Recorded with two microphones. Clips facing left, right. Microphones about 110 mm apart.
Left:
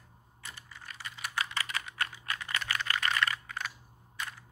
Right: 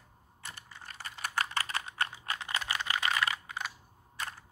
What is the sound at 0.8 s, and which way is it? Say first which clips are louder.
Computer keyboard: right 2 dB; 40° right (ahead or behind).